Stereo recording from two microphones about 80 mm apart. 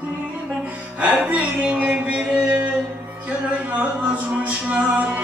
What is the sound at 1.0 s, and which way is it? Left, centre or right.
Music, centre.